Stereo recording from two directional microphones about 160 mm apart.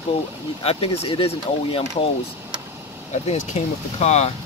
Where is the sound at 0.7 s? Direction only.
35° left (ahead or behind).